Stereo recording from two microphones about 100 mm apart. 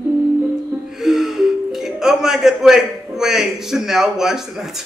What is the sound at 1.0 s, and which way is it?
Music, 5° right (ahead or behind).